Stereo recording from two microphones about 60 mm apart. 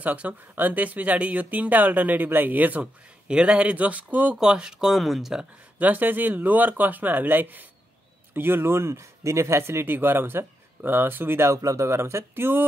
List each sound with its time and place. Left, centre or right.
0.0 s speech: right
3.3 s speech: centre
4.4 s speech: centre
5.8 s speech: right
11.5 s speech: right
11.9 s speech: right